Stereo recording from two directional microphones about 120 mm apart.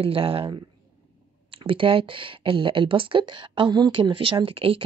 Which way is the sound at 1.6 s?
45° right (ahead or behind).